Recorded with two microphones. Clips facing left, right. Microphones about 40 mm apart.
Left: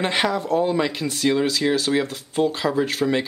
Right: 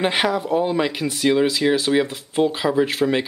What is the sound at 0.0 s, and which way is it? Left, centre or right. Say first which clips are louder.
Speech: right 2 dB; centre.